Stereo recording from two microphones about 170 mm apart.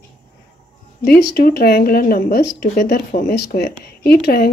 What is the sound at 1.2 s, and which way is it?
Speech, 70° left (ahead or behind).